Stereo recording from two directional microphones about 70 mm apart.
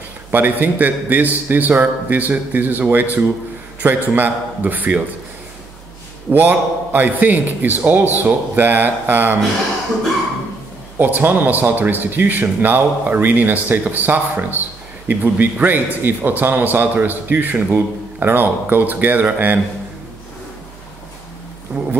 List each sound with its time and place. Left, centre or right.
0.3 s speech: right
6.3 s speech: right
11.0 s speech: right
21.7 s a sound: centre